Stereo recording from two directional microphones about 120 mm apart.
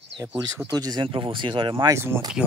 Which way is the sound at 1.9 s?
20° right (ahead or behind).